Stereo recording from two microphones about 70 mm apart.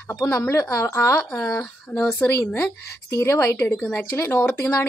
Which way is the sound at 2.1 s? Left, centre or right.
Left.